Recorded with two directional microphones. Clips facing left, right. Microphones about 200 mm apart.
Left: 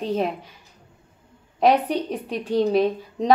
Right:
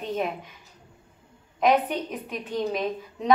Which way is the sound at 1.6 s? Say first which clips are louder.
Left 3 dB; 35° left (ahead or behind).